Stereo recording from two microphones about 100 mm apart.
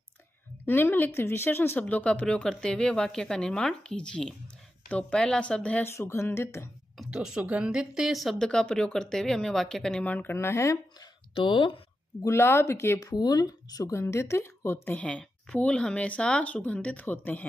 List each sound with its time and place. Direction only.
0.7 s speech: 20° left (ahead or behind)
5.9 s a woman's voice: 25° left (ahead or behind)
7.0 s a woman's voice: 5° right (ahead or behind); by 10.8 s 25° left (ahead or behind)
11.3 s speech: 55° left (ahead or behind)
12.2 s a woman's voice: 25° left (ahead or behind)
13.1 s speech: 40° left (ahead or behind)
13.9 s a woman's voice: 25° left (ahead or behind)
15.0 s speech: 10° left (ahead or behind)